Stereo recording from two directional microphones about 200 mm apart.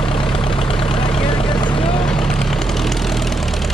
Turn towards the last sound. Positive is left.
turn(degrees=0)  # may be behind; listen again after turning